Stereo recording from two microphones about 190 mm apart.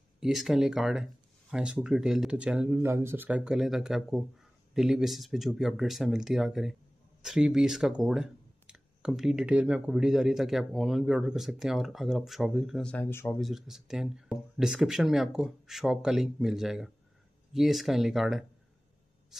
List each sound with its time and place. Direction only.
0.2 s speech: centre (ahead or behind)
13.4 s speech: centre (ahead or behind)